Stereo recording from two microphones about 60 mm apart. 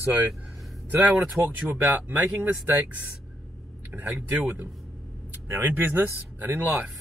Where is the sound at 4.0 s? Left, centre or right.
Right.